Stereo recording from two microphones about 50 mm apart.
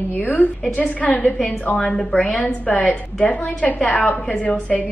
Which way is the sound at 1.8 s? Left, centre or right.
Centre.